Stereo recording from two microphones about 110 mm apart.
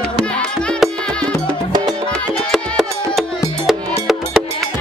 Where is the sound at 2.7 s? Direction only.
Centre (ahead or behind).